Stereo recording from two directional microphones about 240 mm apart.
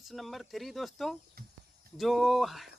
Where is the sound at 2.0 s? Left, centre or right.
Centre.